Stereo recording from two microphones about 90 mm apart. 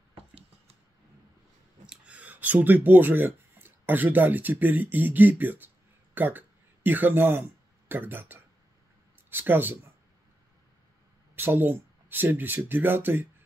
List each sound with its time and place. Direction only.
1.9 s speech: 15° right (ahead or behind)
11.3 s speech: 25° right (ahead or behind)